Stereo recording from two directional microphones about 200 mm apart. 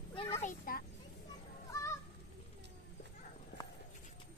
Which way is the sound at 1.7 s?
15° left (ahead or behind).